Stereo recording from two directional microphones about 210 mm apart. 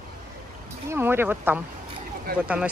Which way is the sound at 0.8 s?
10° right (ahead or behind).